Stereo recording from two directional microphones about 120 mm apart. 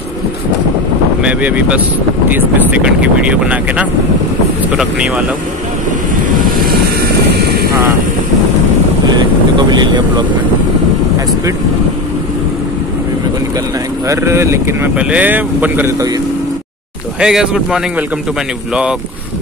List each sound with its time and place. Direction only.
1.2 s speech: 10° right (ahead or behind)
9.7 s speech: 40° right (ahead or behind)
14.0 s speech: 25° right (ahead or behind)
15.0 s speech: 10° right (ahead or behind)
17.2 s speech: 5° right (ahead or behind)